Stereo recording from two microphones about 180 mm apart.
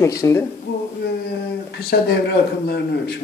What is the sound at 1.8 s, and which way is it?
A man's voice, 60° left (ahead or behind).